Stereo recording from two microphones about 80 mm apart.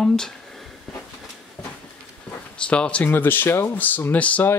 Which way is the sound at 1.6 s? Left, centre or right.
Centre.